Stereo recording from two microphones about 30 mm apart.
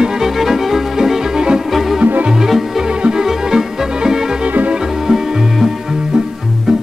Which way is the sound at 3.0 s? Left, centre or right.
Right.